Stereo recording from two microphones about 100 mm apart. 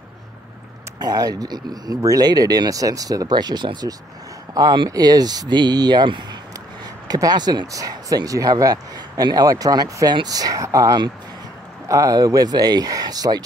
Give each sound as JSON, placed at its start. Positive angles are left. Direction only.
{"t": 0.9, "sound": "speech", "side_deg": -40}